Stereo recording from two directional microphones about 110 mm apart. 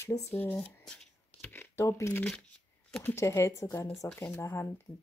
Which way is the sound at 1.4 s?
20° left (ahead or behind).